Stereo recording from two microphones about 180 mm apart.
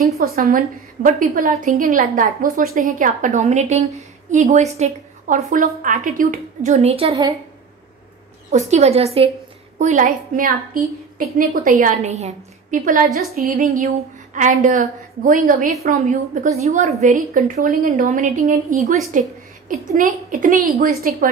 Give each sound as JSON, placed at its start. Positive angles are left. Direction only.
{"t": 0.2, "sound": "speech", "side_deg": -55}
{"t": 8.5, "sound": "speech", "side_deg": -40}
{"t": 9.8, "sound": "speech", "side_deg": -45}